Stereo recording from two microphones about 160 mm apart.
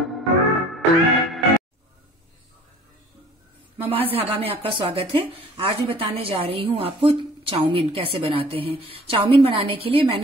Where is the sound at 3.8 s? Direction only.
35° right (ahead or behind).